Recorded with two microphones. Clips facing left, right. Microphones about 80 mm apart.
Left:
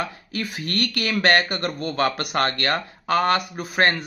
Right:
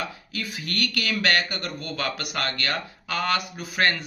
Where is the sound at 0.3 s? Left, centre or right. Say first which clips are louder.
Left 4 dB; left.